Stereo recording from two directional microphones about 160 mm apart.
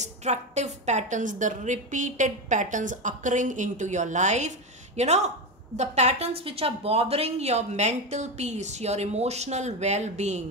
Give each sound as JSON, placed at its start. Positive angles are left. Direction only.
{"t": 0.0, "sound": "a woman's voice", "side_deg": -45}